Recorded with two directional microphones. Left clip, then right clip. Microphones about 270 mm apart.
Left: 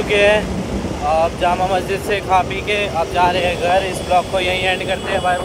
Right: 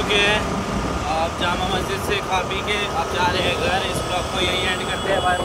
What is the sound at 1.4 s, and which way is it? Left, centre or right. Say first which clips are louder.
Speech: left 5 dB; centre.